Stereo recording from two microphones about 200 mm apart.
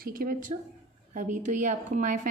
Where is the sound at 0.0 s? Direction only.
45° right (ahead or behind).